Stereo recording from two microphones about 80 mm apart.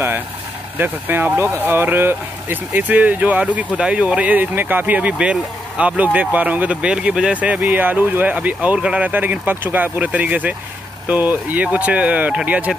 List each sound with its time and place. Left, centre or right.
0.7 s speech: right